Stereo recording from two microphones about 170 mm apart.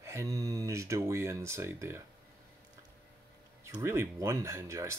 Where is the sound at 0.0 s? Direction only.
20° right (ahead or behind).